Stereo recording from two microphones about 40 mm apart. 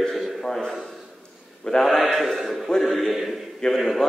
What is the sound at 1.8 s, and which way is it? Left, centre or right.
A man's voice, centre.